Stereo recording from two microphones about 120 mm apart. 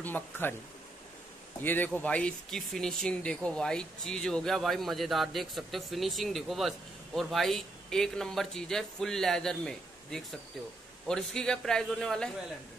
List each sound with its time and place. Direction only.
0.0 s speech: 15° left (ahead or behind)
1.6 s a man's voice: 15° left (ahead or behind)